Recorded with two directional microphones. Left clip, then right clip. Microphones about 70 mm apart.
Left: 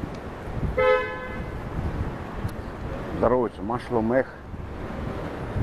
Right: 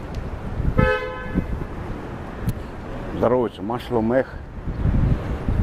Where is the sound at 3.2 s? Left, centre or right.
Right.